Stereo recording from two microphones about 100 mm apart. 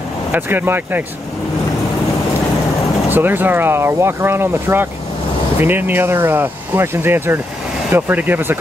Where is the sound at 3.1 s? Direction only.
20° right (ahead or behind).